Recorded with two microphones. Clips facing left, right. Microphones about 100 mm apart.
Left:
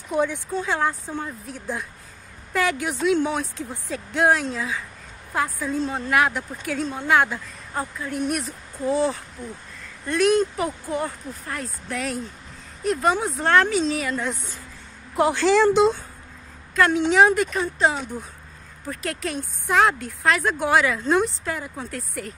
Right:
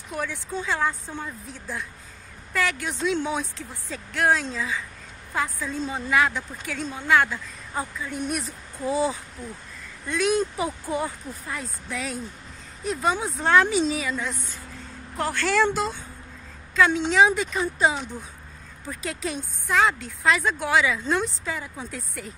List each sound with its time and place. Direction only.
0.1 s speech: 20° left (ahead or behind)
0.5 s a woman's voice: 5° left (ahead or behind)